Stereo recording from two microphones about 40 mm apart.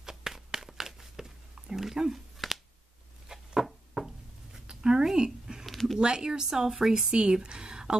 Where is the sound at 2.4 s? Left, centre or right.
Centre.